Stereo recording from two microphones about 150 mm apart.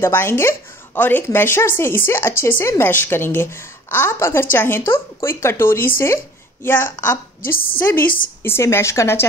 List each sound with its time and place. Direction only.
0.0 s a woman's voice: 15° left (ahead or behind)
8.0 s a woman's voice: 70° left (ahead or behind)
8.4 s a woman's voice: 15° left (ahead or behind)